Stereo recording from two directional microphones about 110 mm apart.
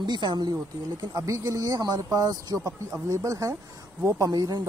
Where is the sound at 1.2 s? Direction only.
30° right (ahead or behind).